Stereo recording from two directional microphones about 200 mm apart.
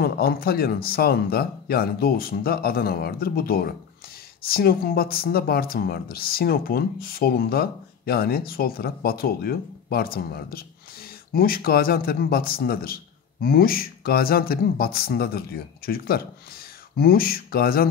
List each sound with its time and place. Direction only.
0.0 s speech: 50° left (ahead or behind)